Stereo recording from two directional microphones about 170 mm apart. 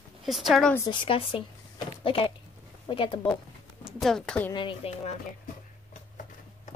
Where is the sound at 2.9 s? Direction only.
30° left (ahead or behind).